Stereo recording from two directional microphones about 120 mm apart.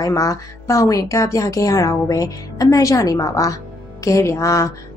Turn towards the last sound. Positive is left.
turn(degrees=25)  # may be behind; listen again after turning